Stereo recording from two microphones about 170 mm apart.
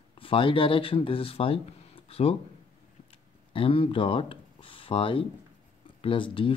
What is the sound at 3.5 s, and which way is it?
Speech, 30° left (ahead or behind).